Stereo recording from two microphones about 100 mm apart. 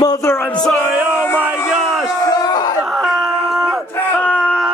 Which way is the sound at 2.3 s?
40° left (ahead or behind).